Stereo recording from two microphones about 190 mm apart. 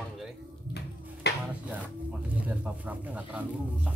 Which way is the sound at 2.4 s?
10° right (ahead or behind).